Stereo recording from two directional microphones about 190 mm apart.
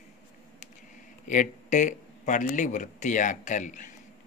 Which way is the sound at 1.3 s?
40° left (ahead or behind).